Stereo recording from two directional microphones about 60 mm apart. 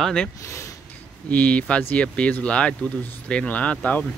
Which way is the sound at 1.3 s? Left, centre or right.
Left.